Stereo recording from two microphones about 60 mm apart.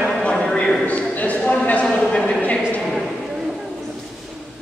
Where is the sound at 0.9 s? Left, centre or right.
Left.